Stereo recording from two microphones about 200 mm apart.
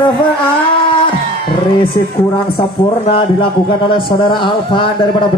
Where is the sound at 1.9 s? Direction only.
25° left (ahead or behind).